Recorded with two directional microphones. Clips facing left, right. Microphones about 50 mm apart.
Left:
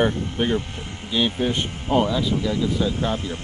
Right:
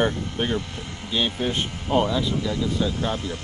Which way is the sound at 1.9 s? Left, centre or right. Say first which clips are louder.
Left 1 dB; centre.